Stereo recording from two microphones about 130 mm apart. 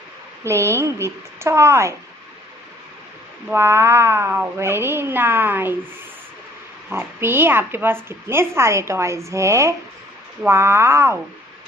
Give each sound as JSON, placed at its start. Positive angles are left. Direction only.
{"t": 0.4, "sound": "speech", "side_deg": -20}
{"t": 3.5, "sound": "speech", "side_deg": -20}
{"t": 6.9, "sound": "speech", "side_deg": -15}